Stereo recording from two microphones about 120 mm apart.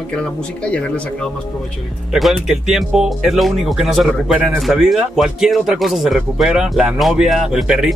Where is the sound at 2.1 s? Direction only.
Centre (ahead or behind).